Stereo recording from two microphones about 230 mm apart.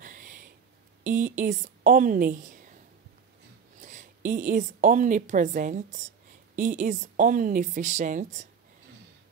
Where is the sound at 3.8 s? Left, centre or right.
Right.